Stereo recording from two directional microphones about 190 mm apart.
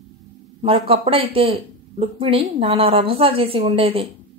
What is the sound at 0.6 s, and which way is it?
A woman's voice, 30° right (ahead or behind).